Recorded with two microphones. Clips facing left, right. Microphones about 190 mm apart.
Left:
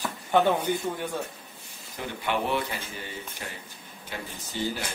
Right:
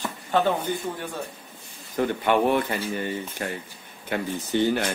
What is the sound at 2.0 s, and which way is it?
Speech, 55° right (ahead or behind).